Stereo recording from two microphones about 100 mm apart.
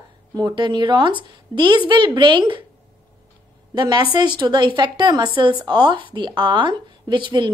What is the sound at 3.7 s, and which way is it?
A woman's voice, 50° right (ahead or behind).